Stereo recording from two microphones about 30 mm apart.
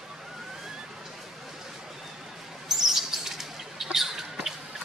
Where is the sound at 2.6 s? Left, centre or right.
Centre.